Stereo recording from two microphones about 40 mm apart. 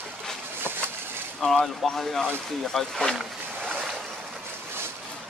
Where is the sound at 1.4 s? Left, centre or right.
Centre.